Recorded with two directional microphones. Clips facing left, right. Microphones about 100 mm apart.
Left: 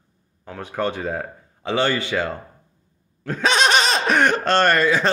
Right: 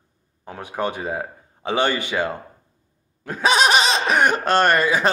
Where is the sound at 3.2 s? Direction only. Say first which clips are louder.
Right 1 dB; 10° right (ahead or behind).